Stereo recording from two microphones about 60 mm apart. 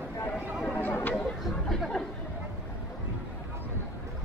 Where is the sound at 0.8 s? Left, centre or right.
Left.